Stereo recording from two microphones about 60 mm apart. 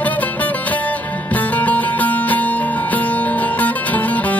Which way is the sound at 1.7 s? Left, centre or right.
Left.